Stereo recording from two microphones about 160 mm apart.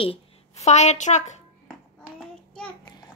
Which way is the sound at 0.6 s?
45° left (ahead or behind).